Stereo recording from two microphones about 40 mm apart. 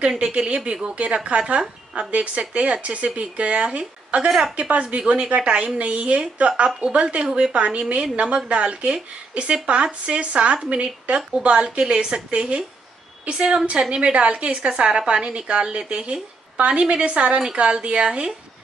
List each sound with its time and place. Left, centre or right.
0.2 s a woman's voice: right
7.2 s a woman's voice: centre
7.5 s a woman's voice: right